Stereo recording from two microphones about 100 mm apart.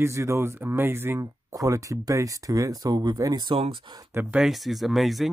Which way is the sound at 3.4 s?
65° right (ahead or behind).